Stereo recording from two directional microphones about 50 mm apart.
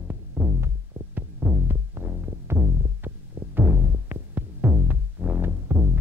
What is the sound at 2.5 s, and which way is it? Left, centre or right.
Music, right.